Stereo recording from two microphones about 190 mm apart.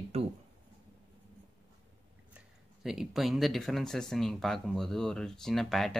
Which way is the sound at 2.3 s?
Centre (ahead or behind).